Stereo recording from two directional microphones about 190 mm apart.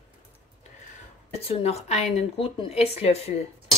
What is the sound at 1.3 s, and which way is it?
A woman's voice, 30° left (ahead or behind).